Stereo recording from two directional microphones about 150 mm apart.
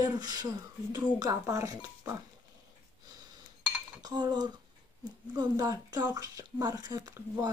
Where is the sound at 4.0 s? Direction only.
30° right (ahead or behind).